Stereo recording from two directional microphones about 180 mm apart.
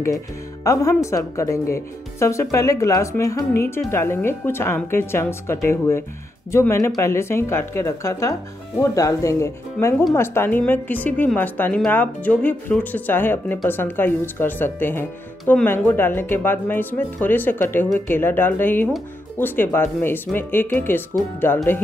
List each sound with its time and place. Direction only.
0.7 s a woman's voice: 20° left (ahead or behind)